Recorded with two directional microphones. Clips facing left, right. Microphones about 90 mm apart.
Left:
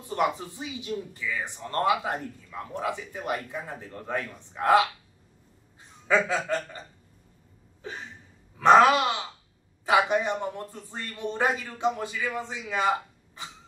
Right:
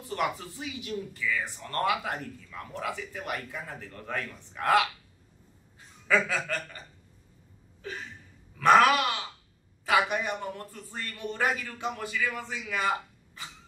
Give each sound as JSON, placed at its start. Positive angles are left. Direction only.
{"t": 0.0, "sound": "speech", "side_deg": 20}
{"t": 6.0, "sound": "speech", "side_deg": 25}
{"t": 7.8, "sound": "speech", "side_deg": 20}